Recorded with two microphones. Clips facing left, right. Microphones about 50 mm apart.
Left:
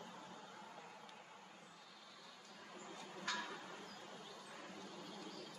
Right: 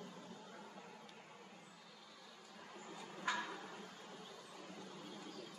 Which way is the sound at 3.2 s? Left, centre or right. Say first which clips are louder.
Right 4 dB; centre.